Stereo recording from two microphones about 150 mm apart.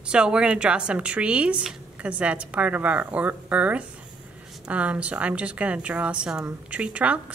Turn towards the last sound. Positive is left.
turn(degrees=-10)  # may be behind; listen again after turning